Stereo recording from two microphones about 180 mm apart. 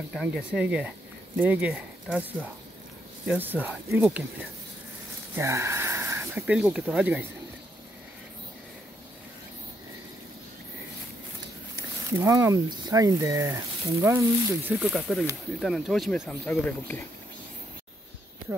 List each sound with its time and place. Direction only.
0.1 s speech: 5° right (ahead or behind)
11.7 s speech: 15° right (ahead or behind); by 17.0 s 10° left (ahead or behind)